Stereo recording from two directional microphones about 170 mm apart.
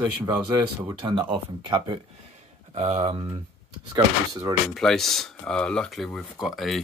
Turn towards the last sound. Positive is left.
turn(degrees=0)  # may be behind; listen again after turning